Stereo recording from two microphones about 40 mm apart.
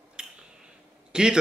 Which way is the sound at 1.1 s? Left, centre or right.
Right.